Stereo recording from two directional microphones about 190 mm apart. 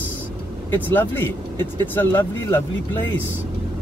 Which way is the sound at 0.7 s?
10° left (ahead or behind).